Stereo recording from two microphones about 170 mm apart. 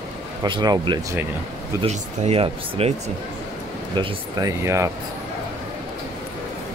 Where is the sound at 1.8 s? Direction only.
35° right (ahead or behind).